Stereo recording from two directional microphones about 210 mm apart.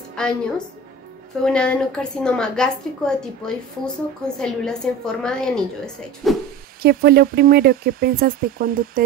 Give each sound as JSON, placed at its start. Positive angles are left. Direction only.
{"t": 0.2, "sound": "a woman's voice", "side_deg": 5}
{"t": 1.4, "sound": "a woman's voice", "side_deg": 5}
{"t": 6.8, "sound": "speech", "side_deg": -45}